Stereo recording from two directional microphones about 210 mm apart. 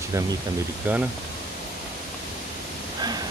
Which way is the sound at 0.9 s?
10° right (ahead or behind).